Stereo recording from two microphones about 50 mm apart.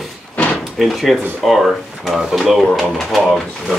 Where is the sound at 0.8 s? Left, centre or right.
Centre.